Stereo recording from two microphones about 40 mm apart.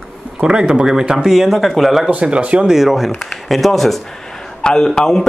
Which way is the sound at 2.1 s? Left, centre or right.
Right.